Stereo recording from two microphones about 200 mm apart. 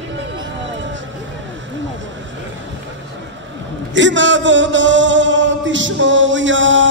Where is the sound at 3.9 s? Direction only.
65° right (ahead or behind).